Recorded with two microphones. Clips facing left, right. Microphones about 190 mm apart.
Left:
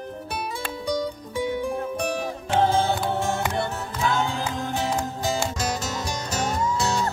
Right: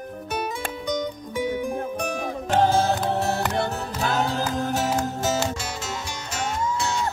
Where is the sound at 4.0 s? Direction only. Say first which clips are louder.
Even; 40° right (ahead or behind).